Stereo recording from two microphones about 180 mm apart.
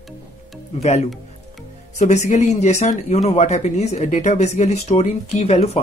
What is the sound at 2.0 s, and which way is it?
Speech, 40° left (ahead or behind).